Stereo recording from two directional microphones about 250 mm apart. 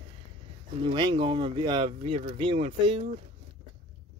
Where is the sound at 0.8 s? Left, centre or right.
Centre.